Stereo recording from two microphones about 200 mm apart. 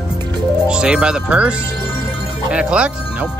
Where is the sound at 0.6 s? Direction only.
5° right (ahead or behind).